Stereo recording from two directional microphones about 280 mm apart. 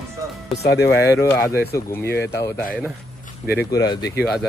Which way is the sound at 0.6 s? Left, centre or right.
Left.